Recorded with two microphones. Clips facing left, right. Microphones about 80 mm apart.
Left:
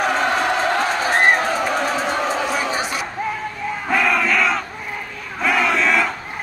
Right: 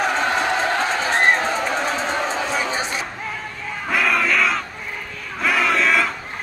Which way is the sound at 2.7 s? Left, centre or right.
Right.